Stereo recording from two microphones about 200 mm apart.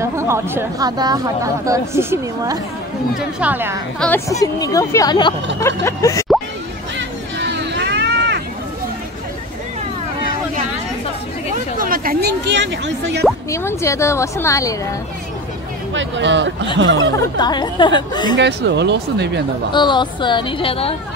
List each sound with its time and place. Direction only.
0.0 s speech: 15° right (ahead or behind)
4.0 s speech: 10° left (ahead or behind)
5.6 s chuckle: 15° left (ahead or behind)
7.0 s a sound: 60° right (ahead or behind)
11.5 s a sound: 45° right (ahead or behind); by 13.2 s 65° right (ahead or behind)
13.5 s speech: 15° left (ahead or behind)
15.9 s speech: 65° right (ahead or behind)
17.4 s a woman's voice: 20° left (ahead or behind)
18.4 s speech: 60° right (ahead or behind)
19.7 s a woman's voice: 25° left (ahead or behind)